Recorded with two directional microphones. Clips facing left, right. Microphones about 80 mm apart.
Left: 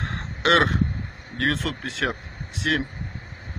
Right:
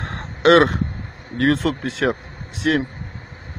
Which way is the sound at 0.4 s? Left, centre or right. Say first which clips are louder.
Right 6 dB; centre.